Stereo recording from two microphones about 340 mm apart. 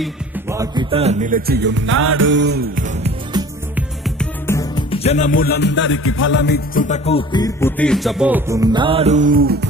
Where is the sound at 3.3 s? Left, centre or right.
Centre.